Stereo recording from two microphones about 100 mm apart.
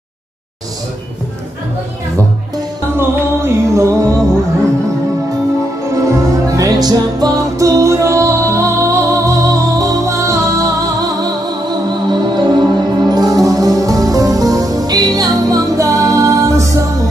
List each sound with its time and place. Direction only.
3.0 s music: 30° right (ahead or behind)
6.1 s music: 35° right (ahead or behind)